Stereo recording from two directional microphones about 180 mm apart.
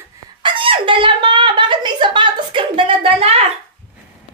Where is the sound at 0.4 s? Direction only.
30° right (ahead or behind).